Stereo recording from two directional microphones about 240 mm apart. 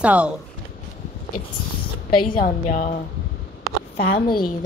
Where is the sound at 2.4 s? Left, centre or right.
Left.